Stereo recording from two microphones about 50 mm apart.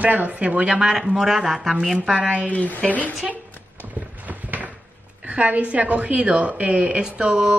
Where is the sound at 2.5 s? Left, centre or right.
Left.